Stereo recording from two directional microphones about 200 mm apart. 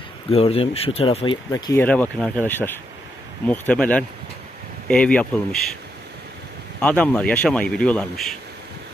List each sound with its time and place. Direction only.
0.3 s speech: 30° left (ahead or behind); by 5.6 s 5° left (ahead or behind)
6.8 s speech: 10° left (ahead or behind)